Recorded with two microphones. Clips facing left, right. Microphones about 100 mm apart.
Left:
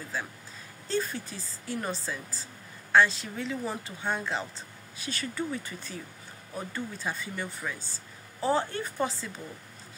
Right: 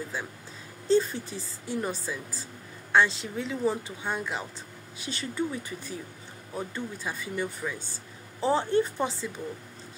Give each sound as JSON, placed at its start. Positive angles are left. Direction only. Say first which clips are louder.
{"t": 0.8, "sound": "a woman's voice", "louder": "right 7 dB", "side_deg": -20}
{"t": 4.9, "sound": "a woman's voice", "louder": "right 2 dB", "side_deg": -20}